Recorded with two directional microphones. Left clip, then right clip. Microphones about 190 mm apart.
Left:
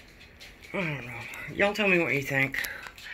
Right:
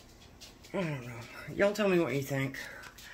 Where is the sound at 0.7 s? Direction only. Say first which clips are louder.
Left 4 dB; centre (ahead or behind).